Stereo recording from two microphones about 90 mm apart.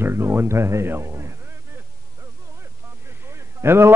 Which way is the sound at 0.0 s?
25° right (ahead or behind).